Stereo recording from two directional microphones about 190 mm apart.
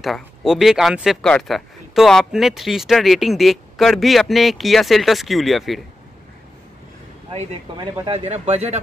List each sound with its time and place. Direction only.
0.0 s speech: centre (ahead or behind)
7.7 s speech: 20° right (ahead or behind)